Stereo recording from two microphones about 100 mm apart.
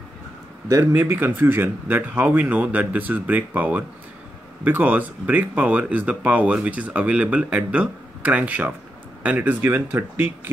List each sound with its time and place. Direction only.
0.7 s speech: 25° right (ahead or behind)